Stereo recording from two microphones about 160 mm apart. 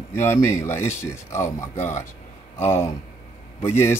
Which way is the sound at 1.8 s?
45° left (ahead or behind).